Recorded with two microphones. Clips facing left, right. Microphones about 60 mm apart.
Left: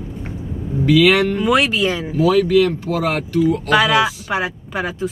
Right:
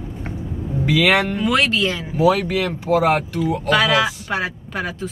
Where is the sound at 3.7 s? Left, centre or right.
Centre.